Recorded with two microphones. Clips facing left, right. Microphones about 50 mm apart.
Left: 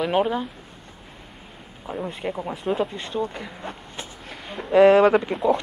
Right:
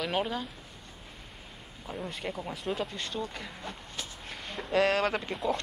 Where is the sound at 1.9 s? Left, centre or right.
Left.